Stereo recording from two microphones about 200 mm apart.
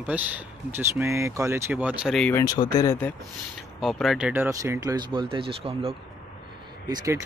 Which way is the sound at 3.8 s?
Centre (ahead or behind).